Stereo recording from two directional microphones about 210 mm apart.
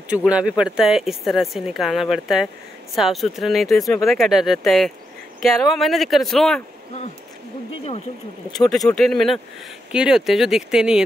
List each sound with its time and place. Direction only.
0.1 s speech: 5° right (ahead or behind)
8.5 s speech: centre (ahead or behind)